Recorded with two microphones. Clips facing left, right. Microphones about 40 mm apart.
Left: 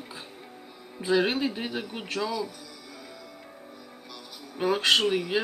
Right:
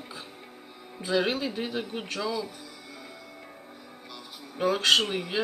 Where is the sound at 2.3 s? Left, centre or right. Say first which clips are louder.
Even; centre.